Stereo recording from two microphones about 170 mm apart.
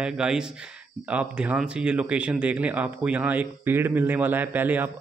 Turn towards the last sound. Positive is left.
turn(degrees=-10)  # may be behind; listen again after turning